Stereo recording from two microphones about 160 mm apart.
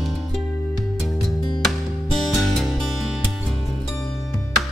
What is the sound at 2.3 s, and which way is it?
Music, centre (ahead or behind).